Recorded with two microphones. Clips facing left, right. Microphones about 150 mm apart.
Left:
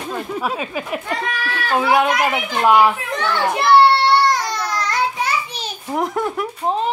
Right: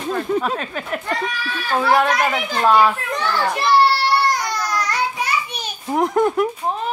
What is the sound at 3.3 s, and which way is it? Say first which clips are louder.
Child singing: left 3 dB; 20° left (ahead or behind).